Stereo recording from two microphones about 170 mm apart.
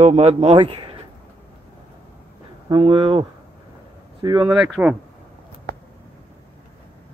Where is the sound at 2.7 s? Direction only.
30° right (ahead or behind).